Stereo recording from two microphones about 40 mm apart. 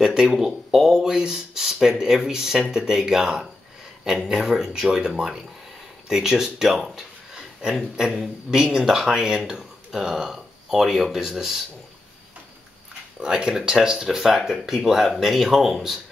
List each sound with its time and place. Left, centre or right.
0.0 s speech: centre
13.2 s speech: centre